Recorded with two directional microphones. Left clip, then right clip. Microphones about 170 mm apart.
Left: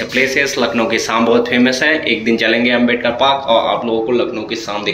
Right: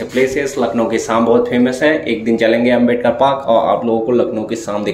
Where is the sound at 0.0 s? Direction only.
25° right (ahead or behind).